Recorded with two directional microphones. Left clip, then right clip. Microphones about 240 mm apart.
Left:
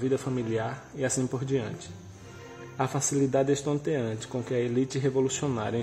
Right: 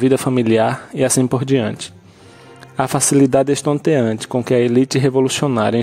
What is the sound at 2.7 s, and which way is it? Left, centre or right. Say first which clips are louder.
Speech: right 13 dB; right.